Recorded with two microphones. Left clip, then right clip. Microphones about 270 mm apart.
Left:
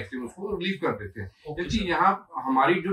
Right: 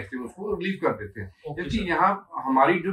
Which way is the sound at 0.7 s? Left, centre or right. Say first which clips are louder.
Right 3 dB; centre.